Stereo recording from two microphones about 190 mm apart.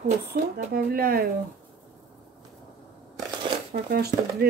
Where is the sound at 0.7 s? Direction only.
50° right (ahead or behind).